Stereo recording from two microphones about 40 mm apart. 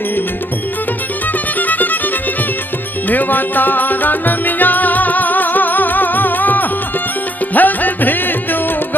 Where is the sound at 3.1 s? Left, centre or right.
Left.